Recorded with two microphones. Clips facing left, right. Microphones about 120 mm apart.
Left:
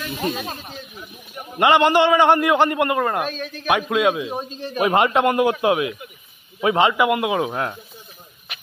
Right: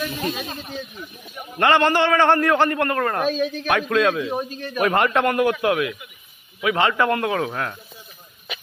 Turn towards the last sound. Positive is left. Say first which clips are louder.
# left 2 dB
turn(degrees=20)  # may be behind; listen again after turning